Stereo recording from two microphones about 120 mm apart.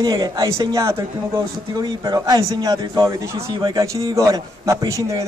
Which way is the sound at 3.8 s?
25° right (ahead or behind).